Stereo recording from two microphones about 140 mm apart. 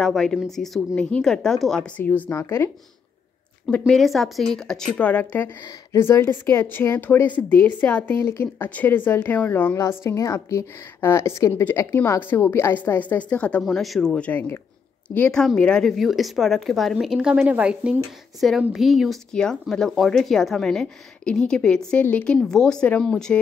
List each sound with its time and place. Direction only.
0.0 s speech: 5° left (ahead or behind)
3.6 s a woman's voice: centre (ahead or behind)